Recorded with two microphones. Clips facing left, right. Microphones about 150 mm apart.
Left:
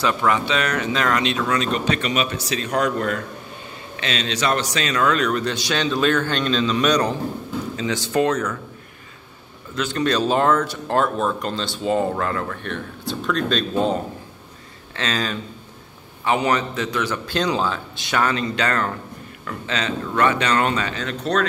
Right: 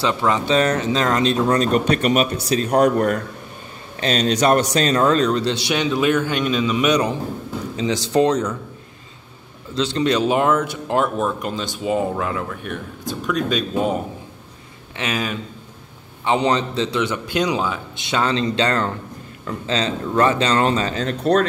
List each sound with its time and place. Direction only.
0.0 s a man's voice: 25° right (ahead or behind)
9.9 s speech: 15° right (ahead or behind)
16.3 s a man's voice: 25° right (ahead or behind)
18.2 s a man's voice: 25° right (ahead or behind)